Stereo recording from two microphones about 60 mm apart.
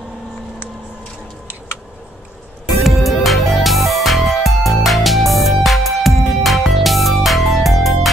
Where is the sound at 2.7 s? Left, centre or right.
Centre.